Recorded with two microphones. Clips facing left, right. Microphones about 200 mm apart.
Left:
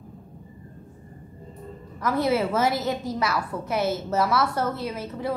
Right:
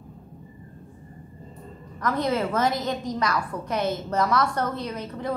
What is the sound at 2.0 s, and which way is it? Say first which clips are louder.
A woman's voice: left 2 dB; 10° left (ahead or behind).